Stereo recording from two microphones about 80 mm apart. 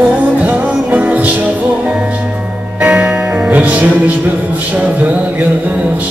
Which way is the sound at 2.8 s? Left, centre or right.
Centre.